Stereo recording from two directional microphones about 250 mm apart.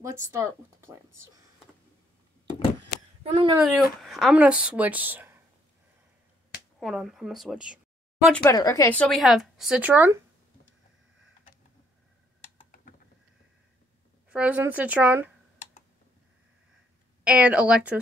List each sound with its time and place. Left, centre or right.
0.0 s speech: centre
3.3 s speech: right
3.6 s speech: centre
6.8 s speech: centre
8.3 s speech: centre
14.3 s speech: centre
17.2 s speech: centre